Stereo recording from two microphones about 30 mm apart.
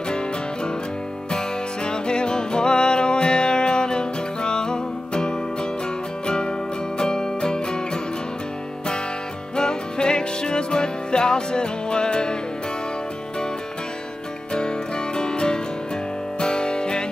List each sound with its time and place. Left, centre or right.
1.9 s music: left
9.6 s music: left
14.5 s music: left